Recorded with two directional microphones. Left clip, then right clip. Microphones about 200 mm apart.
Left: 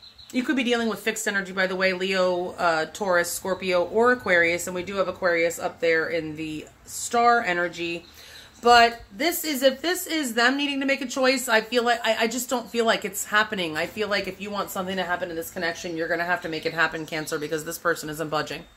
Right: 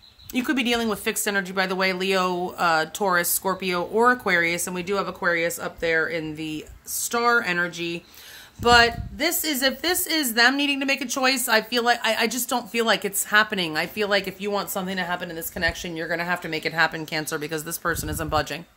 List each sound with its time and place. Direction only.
0.3 s a woman's voice: 45° right (ahead or behind)